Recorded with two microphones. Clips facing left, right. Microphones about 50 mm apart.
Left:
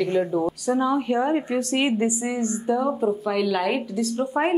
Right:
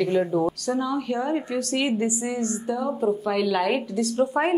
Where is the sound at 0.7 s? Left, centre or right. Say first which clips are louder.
Left 4 dB; left.